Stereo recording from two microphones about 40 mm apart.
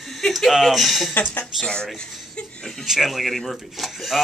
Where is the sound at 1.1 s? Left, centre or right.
Left.